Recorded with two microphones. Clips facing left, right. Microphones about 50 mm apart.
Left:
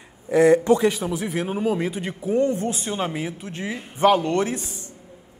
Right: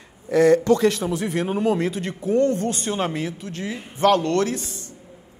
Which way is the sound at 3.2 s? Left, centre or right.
Centre.